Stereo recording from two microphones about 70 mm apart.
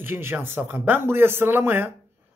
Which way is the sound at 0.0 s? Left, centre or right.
Right.